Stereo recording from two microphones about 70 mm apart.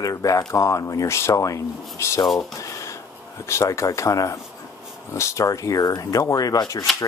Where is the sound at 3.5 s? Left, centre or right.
Left.